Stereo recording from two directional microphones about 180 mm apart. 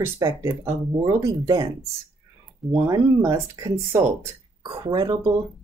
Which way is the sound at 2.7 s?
15° right (ahead or behind).